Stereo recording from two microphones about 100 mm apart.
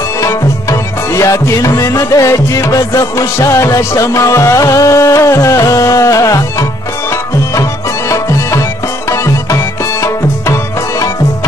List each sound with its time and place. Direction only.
0.2 s tabla: 30° left (ahead or behind)
8.1 s music: 30° left (ahead or behind)
10.0 s tabla: 30° left (ahead or behind)